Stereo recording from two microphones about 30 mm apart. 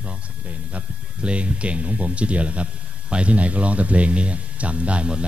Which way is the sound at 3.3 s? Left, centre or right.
Right.